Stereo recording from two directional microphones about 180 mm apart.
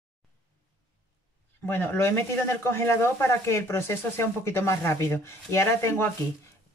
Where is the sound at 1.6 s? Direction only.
10° left (ahead or behind).